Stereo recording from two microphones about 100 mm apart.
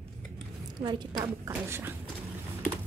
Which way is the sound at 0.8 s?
45° right (ahead or behind).